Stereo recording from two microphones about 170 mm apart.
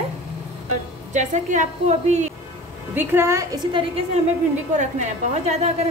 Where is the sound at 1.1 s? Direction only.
45° right (ahead or behind).